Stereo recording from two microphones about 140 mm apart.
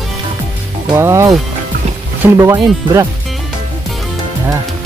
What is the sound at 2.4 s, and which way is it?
Speech, 25° right (ahead or behind).